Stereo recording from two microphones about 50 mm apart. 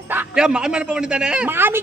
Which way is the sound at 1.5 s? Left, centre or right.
Right.